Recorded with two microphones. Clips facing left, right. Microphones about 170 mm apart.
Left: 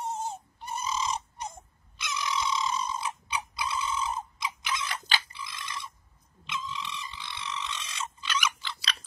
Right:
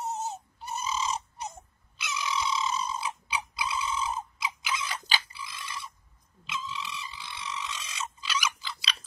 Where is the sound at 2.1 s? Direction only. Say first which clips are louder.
Even; 5° right (ahead or behind).